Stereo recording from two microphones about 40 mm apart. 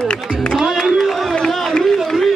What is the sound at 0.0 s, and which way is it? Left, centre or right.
Music, centre.